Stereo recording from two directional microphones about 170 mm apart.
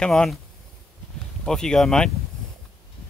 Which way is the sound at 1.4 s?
5° left (ahead or behind).